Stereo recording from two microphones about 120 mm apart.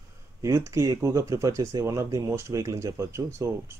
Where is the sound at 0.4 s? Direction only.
25° right (ahead or behind).